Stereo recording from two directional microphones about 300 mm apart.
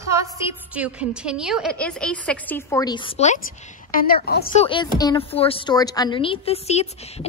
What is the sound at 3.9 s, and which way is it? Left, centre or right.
Speech, left.